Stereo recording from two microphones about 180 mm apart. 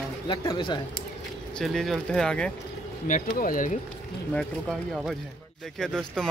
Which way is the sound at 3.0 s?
50° left (ahead or behind).